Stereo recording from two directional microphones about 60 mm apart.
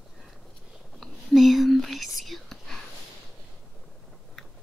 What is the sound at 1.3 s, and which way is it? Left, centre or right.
Whispering, centre.